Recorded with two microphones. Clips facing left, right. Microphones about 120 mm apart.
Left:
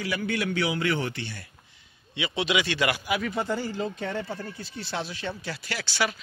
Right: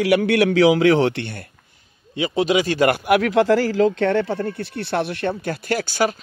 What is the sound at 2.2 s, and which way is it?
Speech, 40° right (ahead or behind).